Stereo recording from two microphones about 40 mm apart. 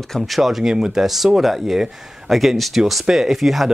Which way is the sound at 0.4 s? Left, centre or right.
Centre.